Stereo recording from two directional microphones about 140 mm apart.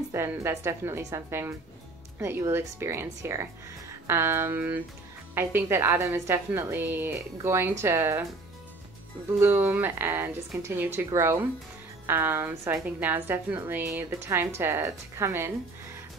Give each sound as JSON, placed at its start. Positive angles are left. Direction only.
{"t": 0.1, "sound": "a woman's voice", "side_deg": -20}
{"t": 9.4, "sound": "a woman's voice", "side_deg": -15}